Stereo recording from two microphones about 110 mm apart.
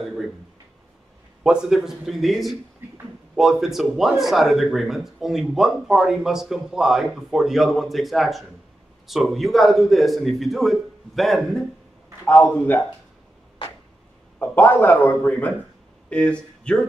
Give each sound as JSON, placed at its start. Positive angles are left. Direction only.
{"t": 1.4, "sound": "speech", "side_deg": -5}
{"t": 12.3, "sound": "a man's voice", "side_deg": 10}
{"t": 14.4, "sound": "a man's voice", "side_deg": 20}